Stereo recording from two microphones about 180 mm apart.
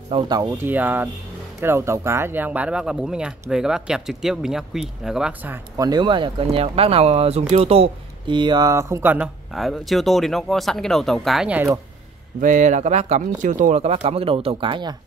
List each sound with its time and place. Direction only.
0.1 s speech: 20° right (ahead or behind)
5.9 s speech: 25° right (ahead or behind); by 11.7 s 5° right (ahead or behind)
12.4 s speech: 45° right (ahead or behind); by 15.0 s 25° right (ahead or behind)